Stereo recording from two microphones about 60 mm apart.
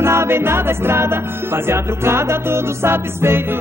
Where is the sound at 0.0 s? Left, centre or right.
Right.